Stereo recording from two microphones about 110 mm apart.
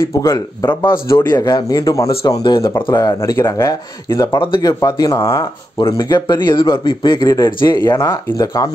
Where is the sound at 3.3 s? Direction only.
25° left (ahead or behind).